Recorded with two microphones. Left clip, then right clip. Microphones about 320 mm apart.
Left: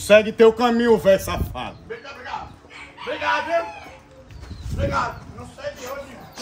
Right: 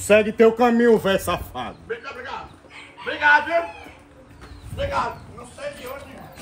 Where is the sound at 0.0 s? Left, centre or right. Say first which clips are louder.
Left 2 dB; centre.